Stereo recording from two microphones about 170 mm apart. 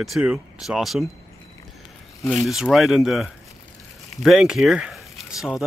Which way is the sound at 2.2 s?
Centre (ahead or behind).